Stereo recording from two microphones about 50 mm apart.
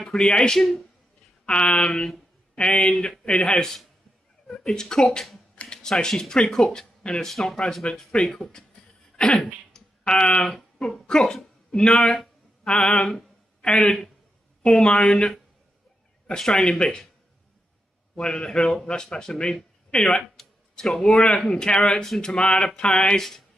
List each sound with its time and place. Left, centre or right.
0.0 s speech: centre
1.4 s speech: centre
9.1 s throat clearing: centre
10.0 s speech: left
10.5 s speech: centre
11.1 s speech: centre
13.0 s a sound: centre
13.6 s a woman's voice: centre
18.1 s speech: centre
20.3 s speech: centre